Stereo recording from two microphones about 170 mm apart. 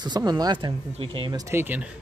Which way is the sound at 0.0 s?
25° right (ahead or behind).